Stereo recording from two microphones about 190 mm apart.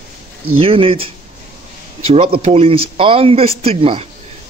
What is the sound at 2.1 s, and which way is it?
A man's voice, 30° right (ahead or behind).